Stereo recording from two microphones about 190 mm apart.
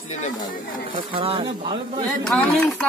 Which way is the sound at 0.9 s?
25° right (ahead or behind).